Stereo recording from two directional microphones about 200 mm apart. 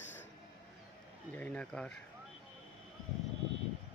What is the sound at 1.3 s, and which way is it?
Speech, 5° left (ahead or behind).